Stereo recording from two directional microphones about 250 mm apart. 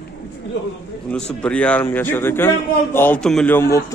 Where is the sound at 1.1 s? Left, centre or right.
Centre.